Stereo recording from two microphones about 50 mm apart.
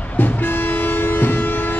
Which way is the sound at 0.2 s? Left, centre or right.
Left.